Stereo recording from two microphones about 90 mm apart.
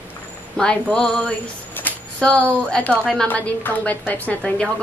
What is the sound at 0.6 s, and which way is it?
A woman's voice, 10° left (ahead or behind).